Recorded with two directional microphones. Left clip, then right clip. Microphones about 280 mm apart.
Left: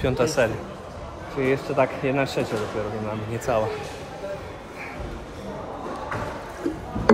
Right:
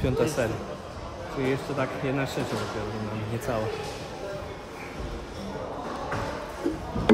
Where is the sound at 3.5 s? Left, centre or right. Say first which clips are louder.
Left 7 dB; centre.